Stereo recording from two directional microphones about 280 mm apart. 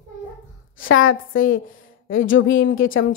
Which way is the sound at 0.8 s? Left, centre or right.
Left.